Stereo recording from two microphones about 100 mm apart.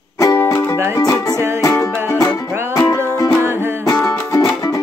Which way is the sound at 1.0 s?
35° left (ahead or behind).